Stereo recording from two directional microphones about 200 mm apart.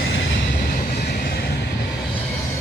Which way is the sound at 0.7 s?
50° left (ahead or behind).